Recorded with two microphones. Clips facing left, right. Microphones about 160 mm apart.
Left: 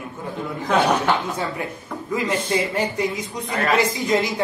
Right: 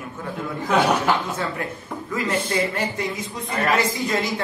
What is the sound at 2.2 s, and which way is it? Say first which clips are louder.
A woman's voice: even; 20° left (ahead or behind).